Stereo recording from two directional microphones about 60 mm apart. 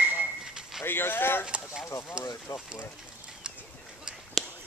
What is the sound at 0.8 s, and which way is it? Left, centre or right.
Speech, left.